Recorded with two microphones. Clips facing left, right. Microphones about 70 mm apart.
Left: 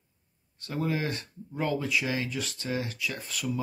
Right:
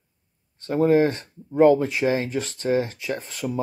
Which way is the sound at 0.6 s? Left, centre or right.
Right.